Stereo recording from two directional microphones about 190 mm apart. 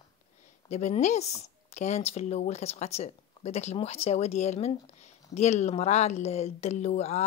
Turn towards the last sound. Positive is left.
turn(degrees=35)  # may be behind; listen again after turning